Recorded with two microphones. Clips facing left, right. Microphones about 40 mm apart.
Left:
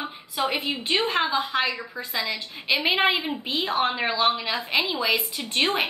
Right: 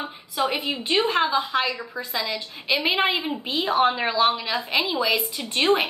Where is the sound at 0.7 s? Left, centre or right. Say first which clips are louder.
Right 2 dB; centre.